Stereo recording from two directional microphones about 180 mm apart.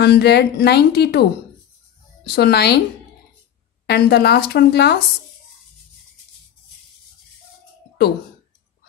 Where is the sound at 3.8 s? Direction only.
65° left (ahead or behind).